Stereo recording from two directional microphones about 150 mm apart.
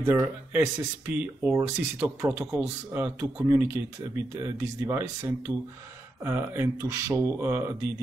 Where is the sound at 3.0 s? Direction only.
15° right (ahead or behind).